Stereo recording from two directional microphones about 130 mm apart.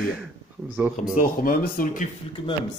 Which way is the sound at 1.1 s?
90° left.